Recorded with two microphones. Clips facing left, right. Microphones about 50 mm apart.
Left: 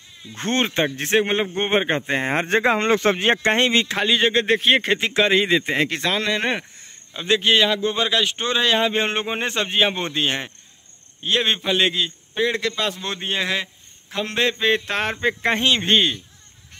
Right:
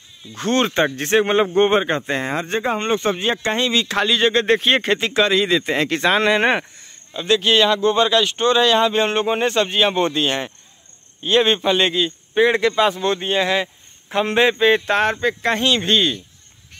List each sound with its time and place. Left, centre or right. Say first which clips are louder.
0.3 s speech: right 3 dB; left
0.9 s a man's voice: right 3 dB; centre
1.7 s speech: right 2 dB; centre
2.3 s speech: left 6 dB; left
3.8 s a man's voice: right 2 dB; centre
6.1 s speech: right 7 dB; right
6.8 s a man's voice: right 4 dB; centre
11.1 s a man's voice: right 5 dB; centre
12.4 s speech: right 7 dB; centre
13.0 s a man's voice: right 6 dB; centre
14.2 s speech: right 5 dB; centre
14.6 s a man's voice: right 5 dB; centre
15.1 s a man's voice: right 1 dB; centre